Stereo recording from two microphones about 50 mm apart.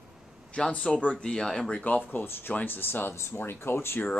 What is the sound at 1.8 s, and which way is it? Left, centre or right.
Speech, left.